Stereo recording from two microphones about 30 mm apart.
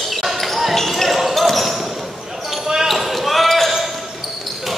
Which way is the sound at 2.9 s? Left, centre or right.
Centre.